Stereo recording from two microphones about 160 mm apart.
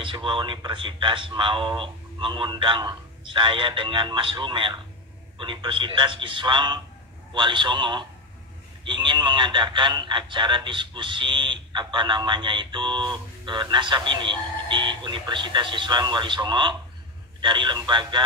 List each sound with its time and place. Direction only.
0.0 s speech: 30° right (ahead or behind)